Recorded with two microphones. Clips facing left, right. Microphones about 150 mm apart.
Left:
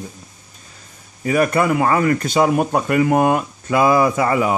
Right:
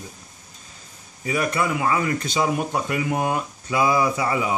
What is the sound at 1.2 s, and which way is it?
Speech, 55° left (ahead or behind).